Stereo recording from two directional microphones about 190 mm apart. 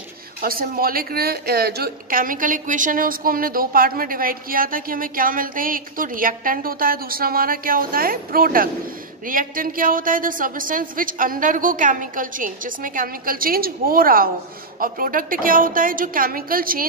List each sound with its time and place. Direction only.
0.4 s a woman's voice: 50° right (ahead or behind)